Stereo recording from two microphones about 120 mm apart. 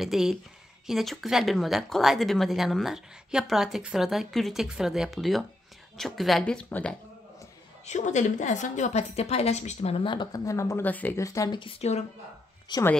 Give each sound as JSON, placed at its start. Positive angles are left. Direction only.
{"t": 0.0, "sound": "speech", "side_deg": 0}
{"t": 7.8, "sound": "a woman's voice", "side_deg": 85}
{"t": 10.4, "sound": "speech", "side_deg": 25}
{"t": 10.9, "sound": "speech", "side_deg": 15}
{"t": 11.1, "sound": "speech", "side_deg": 25}
{"t": 11.8, "sound": "a woman's voice", "side_deg": 60}
{"t": 12.7, "sound": "a woman's voice", "side_deg": 40}